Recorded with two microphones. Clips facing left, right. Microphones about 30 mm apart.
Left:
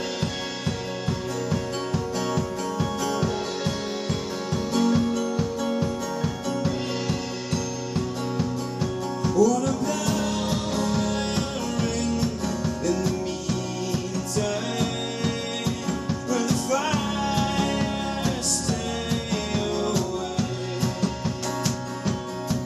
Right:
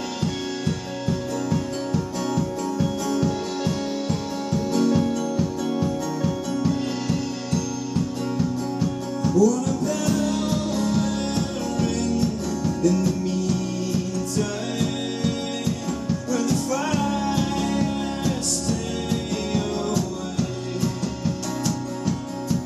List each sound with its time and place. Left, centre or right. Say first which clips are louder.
0.2 s music: right 2 dB; centre